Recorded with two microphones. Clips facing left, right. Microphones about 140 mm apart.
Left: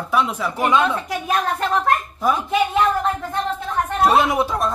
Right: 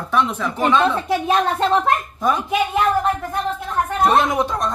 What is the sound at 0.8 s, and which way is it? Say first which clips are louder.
A woman's voice: right 3 dB; 30° right (ahead or behind).